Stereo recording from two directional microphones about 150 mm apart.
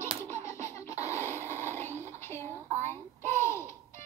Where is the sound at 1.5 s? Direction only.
55° right (ahead or behind).